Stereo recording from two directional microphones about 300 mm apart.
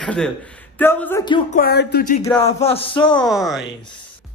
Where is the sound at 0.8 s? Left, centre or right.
Centre.